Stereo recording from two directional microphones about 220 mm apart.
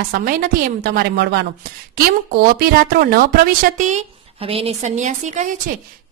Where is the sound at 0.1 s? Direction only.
40° right (ahead or behind).